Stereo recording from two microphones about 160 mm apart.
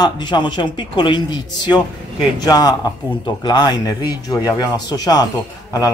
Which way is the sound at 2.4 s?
25° left (ahead or behind).